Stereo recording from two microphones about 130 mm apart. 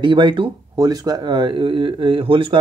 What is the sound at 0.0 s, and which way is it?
Speech, 40° right (ahead or behind).